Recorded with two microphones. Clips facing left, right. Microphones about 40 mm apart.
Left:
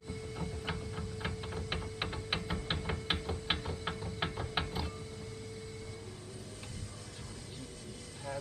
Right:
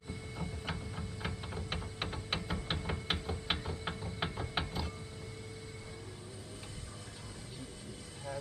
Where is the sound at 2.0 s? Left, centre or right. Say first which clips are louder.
Even; centre.